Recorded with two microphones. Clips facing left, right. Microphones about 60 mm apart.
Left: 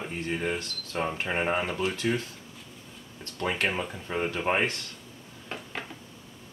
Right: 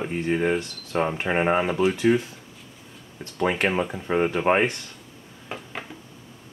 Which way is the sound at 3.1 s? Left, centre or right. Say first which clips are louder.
Right 6 dB; right.